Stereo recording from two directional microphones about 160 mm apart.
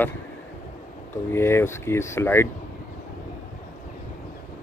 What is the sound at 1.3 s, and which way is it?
Speech, 15° left (ahead or behind).